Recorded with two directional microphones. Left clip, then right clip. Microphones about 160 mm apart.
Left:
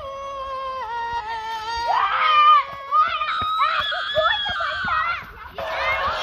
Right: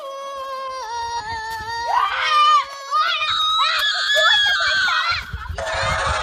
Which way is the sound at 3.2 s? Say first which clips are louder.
Right 3 dB; 30° right (ahead or behind).